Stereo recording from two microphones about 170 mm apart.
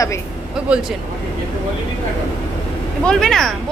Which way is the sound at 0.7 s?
5° right (ahead or behind).